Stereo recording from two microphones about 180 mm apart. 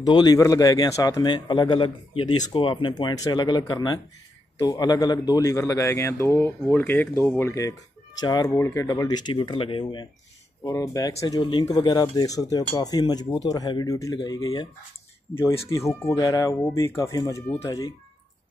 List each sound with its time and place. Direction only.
0.0 s a man's voice: 25° left (ahead or behind)
15.7 s a man's voice: 15° left (ahead or behind)